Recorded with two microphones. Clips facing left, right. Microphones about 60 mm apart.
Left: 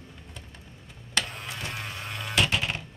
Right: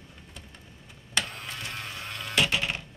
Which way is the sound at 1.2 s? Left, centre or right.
Centre.